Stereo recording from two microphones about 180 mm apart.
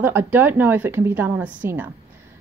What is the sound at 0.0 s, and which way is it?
A woman's voice, 10° right (ahead or behind).